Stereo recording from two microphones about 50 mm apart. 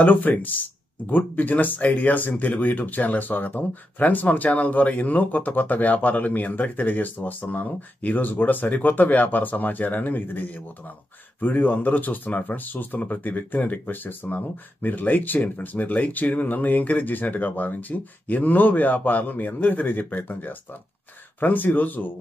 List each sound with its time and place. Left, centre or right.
0.0 s speech: left